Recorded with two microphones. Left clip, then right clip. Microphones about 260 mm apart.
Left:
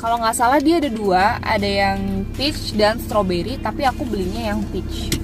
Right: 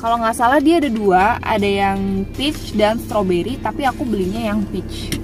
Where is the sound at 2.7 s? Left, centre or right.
Centre.